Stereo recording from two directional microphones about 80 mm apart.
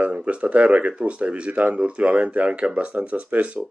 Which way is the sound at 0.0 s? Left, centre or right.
Centre.